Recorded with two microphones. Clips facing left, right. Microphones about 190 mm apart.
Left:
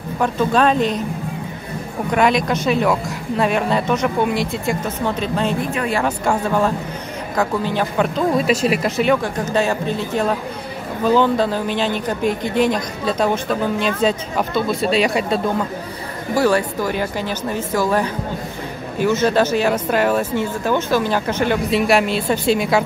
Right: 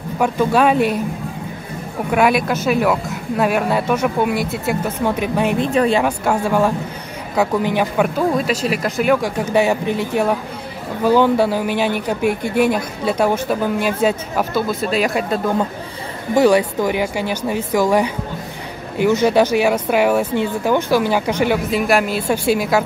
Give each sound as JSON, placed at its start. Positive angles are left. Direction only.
{"t": 0.2, "sound": "speech", "side_deg": -10}
{"t": 2.0, "sound": "speech", "side_deg": -5}
{"t": 5.6, "sound": "speech", "side_deg": -30}
{"t": 6.0, "sound": "speech", "side_deg": -10}
{"t": 16.3, "sound": "a woman's voice", "side_deg": -15}